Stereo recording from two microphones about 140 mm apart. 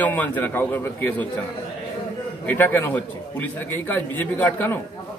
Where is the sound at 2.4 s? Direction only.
15° left (ahead or behind).